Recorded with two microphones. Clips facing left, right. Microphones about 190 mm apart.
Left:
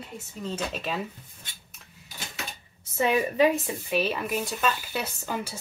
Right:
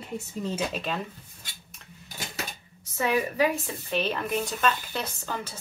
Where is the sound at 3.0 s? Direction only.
20° left (ahead or behind).